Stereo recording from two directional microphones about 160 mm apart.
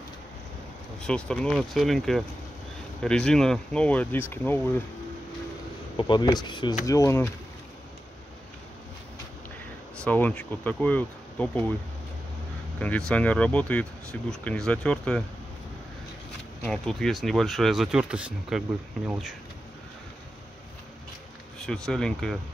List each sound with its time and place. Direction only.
1.0 s speech: 5° left (ahead or behind)
5.9 s speech: 30° left (ahead or behind)
10.0 s speech: 10° left (ahead or behind)
12.7 s speech: 10° left (ahead or behind)
16.6 s speech: 5° left (ahead or behind)
21.6 s speech: 5° left (ahead or behind)